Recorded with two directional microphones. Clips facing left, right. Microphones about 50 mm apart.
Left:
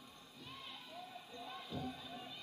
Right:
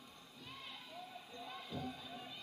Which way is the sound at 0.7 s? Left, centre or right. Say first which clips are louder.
Even; centre.